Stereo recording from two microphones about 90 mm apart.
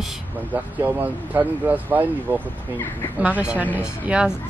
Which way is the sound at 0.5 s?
20° right (ahead or behind).